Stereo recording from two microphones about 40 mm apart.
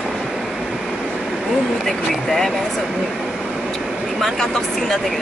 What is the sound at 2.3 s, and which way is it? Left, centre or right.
Speech, centre.